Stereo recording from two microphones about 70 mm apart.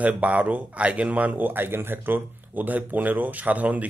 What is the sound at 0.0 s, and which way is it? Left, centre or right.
A man's voice, right.